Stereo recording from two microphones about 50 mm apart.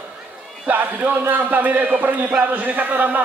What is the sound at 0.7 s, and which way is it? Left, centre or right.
A man's voice, right.